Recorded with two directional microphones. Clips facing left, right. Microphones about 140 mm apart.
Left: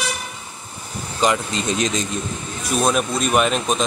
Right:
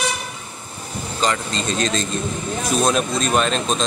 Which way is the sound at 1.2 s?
15° left (ahead or behind).